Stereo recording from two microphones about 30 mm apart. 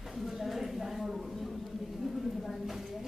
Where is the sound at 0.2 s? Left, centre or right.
Centre.